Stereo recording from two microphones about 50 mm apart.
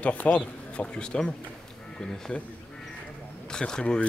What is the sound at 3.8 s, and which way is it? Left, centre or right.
Speech, left.